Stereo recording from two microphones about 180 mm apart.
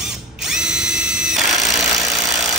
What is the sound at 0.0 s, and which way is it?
Drill, 5° right (ahead or behind).